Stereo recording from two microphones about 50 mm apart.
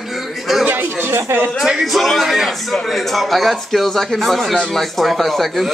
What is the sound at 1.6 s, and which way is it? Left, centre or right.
Speech, centre.